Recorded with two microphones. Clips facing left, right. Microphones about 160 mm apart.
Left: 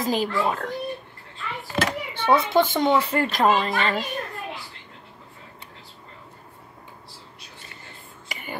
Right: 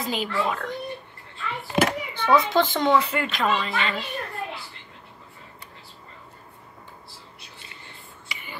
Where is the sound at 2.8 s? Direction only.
30° left (ahead or behind).